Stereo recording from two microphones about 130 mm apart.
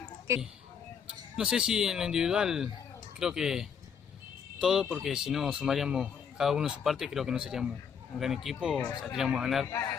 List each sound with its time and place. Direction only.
1.3 s speech: 5° right (ahead or behind)
9.7 s a man's voice: 20° left (ahead or behind)